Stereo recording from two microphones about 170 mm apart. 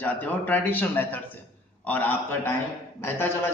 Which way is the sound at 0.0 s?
10° left (ahead or behind).